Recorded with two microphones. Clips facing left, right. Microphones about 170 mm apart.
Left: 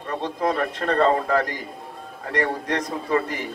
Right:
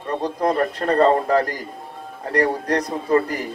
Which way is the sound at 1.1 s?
Centre (ahead or behind).